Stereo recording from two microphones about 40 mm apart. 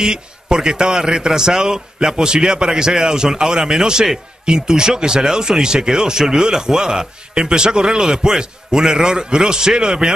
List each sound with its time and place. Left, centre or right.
0.0 s speech: centre